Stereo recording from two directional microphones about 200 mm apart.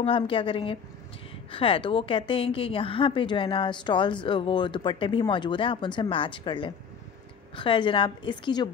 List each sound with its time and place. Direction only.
0.0 s a woman's voice: 25° left (ahead or behind)